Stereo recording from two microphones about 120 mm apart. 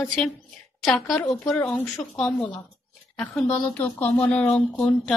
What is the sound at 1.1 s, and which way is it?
Speech, 20° left (ahead or behind).